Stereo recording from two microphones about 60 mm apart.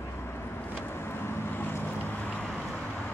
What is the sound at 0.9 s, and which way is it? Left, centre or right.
Vehicle, left.